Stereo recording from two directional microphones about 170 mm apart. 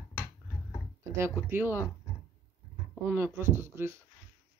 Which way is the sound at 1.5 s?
15° right (ahead or behind).